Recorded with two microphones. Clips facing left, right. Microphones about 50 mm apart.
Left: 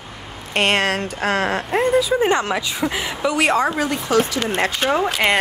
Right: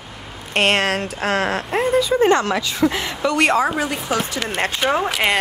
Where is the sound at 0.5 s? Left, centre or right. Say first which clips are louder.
Right 1 dB; centre.